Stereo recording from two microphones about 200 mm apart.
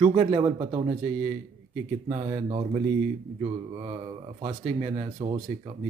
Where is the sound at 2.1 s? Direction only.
25° right (ahead or behind).